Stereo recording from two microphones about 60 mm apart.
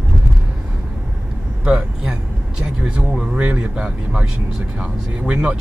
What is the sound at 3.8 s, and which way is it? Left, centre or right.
Speech, centre.